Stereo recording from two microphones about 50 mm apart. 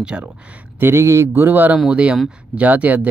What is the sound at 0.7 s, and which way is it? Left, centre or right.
Speech, right.